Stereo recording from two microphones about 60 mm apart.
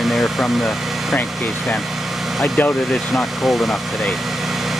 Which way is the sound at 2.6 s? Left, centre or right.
Left.